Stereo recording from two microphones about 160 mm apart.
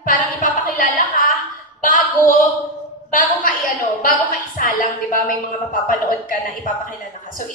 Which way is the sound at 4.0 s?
55° left (ahead or behind).